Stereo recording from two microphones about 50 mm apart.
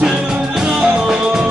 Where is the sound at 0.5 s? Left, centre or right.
Centre.